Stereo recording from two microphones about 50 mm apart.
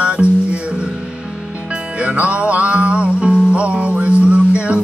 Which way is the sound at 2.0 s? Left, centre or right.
Right.